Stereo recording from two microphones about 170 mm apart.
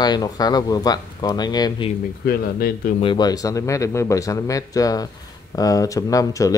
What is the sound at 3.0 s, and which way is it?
Speech, 25° left (ahead or behind).